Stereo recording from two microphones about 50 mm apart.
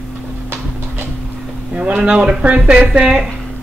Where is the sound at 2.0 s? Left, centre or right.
Right.